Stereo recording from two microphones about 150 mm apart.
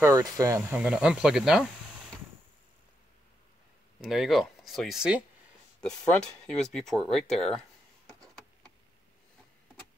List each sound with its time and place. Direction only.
0.0 s speech: 20° right (ahead or behind); by 1.6 s 5° right (ahead or behind)
4.0 s speech: centre (ahead or behind)
8.2 s a sound: 5° left (ahead or behind)